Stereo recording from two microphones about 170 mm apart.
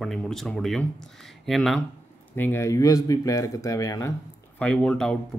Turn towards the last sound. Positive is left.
turn(degrees=5)  # may be behind; listen again after turning